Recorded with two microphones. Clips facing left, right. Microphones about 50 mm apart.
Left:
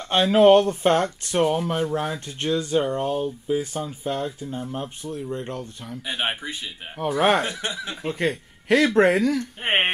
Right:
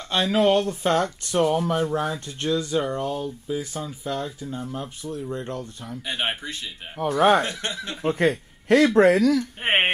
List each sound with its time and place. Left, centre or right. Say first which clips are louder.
0.1 s speech: left 5 dB; left
5.9 s speech: even; centre
7.0 s speech: right 2 dB; centre
7.3 s speech: right 1 dB; centre
8.1 s speech: right 4 dB; right
8.6 s speech: right 1 dB; left
9.4 s speech: right 1 dB; centre